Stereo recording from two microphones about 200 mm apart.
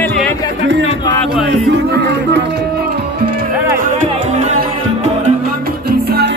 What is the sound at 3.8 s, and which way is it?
Music, 35° right (ahead or behind).